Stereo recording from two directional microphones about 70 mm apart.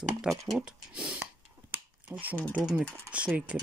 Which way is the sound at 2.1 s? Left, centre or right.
Right.